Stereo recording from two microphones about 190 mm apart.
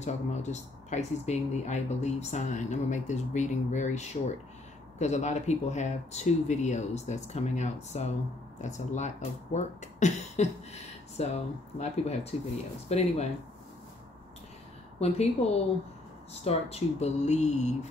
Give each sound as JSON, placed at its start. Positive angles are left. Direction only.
{"t": 0.0, "sound": "speech", "side_deg": 35}
{"t": 15.0, "sound": "speech", "side_deg": 35}